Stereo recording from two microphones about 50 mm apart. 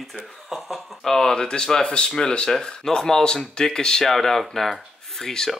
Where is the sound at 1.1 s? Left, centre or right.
Centre.